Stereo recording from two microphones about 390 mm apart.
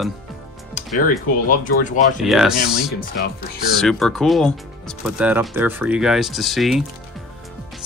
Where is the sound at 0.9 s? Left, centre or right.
Left.